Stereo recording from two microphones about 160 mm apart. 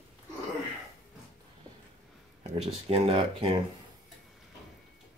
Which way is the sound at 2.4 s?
40° right (ahead or behind).